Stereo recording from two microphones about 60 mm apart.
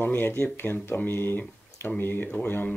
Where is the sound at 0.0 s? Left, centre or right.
Left.